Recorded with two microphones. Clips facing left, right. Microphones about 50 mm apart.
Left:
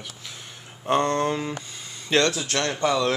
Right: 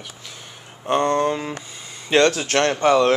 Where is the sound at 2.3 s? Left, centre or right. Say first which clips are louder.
Right 6 dB; right.